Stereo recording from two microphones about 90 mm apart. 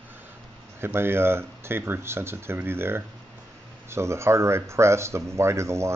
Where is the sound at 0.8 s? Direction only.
25° right (ahead or behind).